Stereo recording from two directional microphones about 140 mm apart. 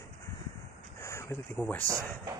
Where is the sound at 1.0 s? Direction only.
20° left (ahead or behind).